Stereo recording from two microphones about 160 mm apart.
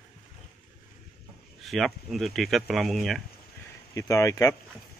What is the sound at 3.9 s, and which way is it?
Speech, 20° left (ahead or behind).